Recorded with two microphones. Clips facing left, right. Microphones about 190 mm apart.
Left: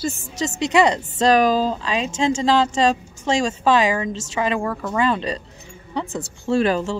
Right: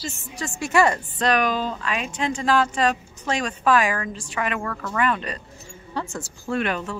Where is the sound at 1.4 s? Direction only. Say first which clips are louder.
Left 6 dB; 35° left (ahead or behind).